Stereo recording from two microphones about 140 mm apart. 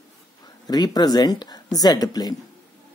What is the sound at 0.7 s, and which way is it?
Speech, 30° left (ahead or behind).